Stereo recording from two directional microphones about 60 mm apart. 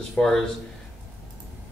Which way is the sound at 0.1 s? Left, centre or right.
Centre.